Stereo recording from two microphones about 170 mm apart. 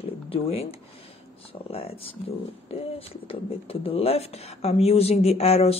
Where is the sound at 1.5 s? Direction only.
35° left (ahead or behind).